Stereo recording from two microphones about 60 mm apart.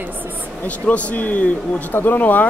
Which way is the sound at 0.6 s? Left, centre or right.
Left.